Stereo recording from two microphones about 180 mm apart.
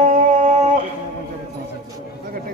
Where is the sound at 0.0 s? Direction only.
40° right (ahead or behind).